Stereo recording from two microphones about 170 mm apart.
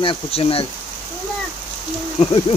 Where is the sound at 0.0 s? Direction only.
30° left (ahead or behind).